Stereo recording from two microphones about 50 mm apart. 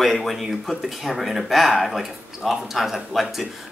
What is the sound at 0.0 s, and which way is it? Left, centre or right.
Speech, centre.